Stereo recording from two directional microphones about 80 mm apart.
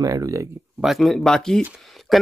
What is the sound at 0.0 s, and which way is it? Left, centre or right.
Speech, right.